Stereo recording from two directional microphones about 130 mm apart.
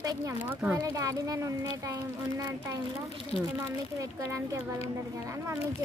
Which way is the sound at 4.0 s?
25° right (ahead or behind).